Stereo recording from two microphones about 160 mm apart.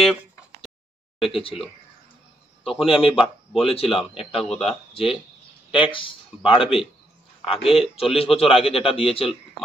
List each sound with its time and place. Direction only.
0.0 s a sound: centre (ahead or behind)
1.2 s a man's voice: 35° left (ahead or behind)
2.8 s a man's voice: 35° left (ahead or behind)
4.5 s speech: 5° left (ahead or behind)
5.7 s a man's voice: 30° left (ahead or behind)